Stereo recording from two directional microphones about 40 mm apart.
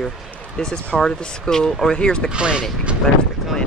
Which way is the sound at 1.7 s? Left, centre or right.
Centre.